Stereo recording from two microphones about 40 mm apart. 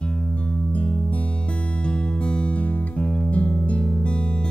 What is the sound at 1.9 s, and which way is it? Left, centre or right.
Music, left.